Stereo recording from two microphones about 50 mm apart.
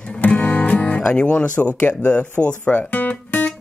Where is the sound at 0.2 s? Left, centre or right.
Left.